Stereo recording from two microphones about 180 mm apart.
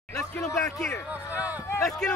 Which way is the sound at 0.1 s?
15° left (ahead or behind).